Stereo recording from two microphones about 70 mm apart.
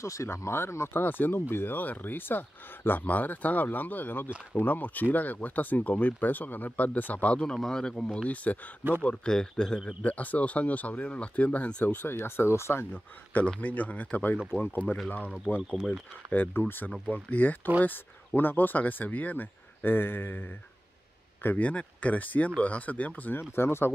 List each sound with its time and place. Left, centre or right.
0.0 s speech: left; by 7.5 s centre
7.5 s speech: centre
10.0 s speech: left
12.9 s speech: left
15.7 s speech: centre
16.3 s speech: left
23.5 s speech: left